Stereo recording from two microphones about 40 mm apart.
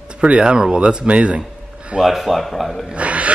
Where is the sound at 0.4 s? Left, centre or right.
Right.